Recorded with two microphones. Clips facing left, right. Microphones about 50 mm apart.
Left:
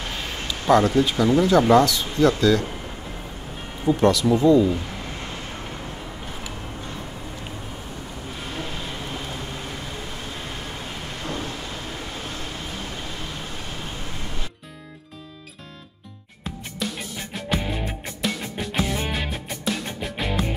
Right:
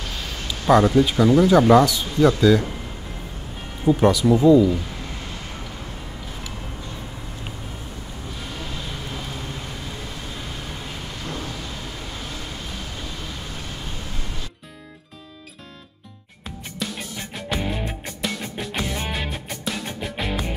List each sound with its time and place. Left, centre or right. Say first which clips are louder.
0.0 s a sound: left 1 dB; left
0.5 s speech: right 1 dB; centre
3.8 s speech: right 2 dB; centre
11.2 s vehicle: left 2 dB; left
16.4 s music: left 1 dB; centre